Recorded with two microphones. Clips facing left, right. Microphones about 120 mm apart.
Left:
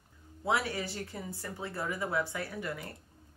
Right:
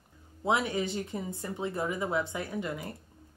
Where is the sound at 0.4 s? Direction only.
20° right (ahead or behind).